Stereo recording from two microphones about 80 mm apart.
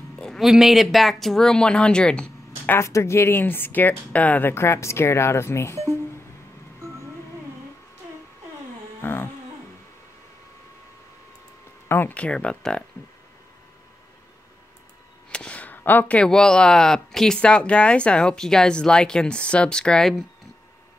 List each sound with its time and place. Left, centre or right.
0.1 s a sound: centre
0.4 s speech: centre
2.8 s speech: left
9.0 s a sound: left
11.9 s speech: left
15.3 s speech: centre